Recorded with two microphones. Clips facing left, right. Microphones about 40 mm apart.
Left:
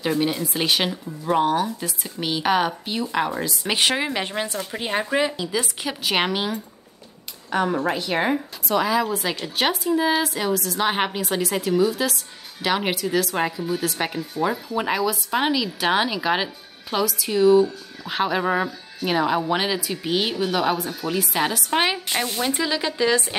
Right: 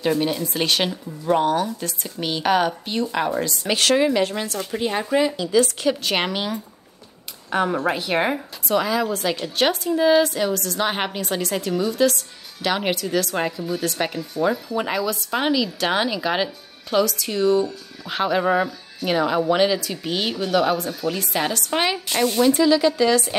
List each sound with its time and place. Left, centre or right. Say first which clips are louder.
0.0 s a woman's voice: right 1 dB; centre
3.7 s speech: right 4 dB; centre
7.5 s a woman's voice: right 1 dB; centre